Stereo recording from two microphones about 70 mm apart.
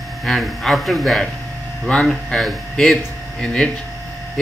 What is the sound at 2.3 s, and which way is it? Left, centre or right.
Speech, centre.